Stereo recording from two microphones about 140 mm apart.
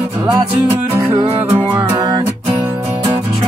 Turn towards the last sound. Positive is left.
turn(degrees=-25)  # may be behind; listen again after turning